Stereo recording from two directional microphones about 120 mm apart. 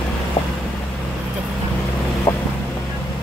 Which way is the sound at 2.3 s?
20° left (ahead or behind).